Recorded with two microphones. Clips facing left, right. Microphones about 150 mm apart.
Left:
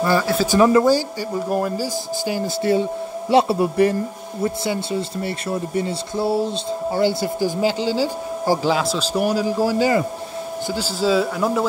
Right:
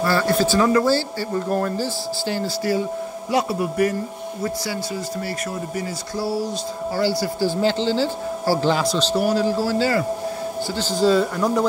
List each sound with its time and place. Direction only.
0.0 s speech: 15° left (ahead or behind)
2.6 s a man's voice: 25° left (ahead or behind); by 11.6 s 5° left (ahead or behind)